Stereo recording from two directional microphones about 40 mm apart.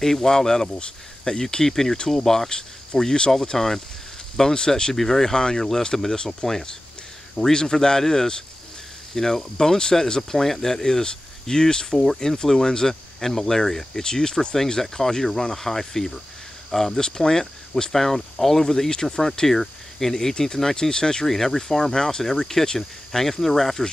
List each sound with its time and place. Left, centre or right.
0.0 s speech: centre
4.9 s speech: centre